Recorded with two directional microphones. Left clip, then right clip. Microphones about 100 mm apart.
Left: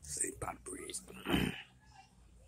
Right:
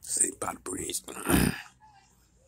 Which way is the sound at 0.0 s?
65° right (ahead or behind).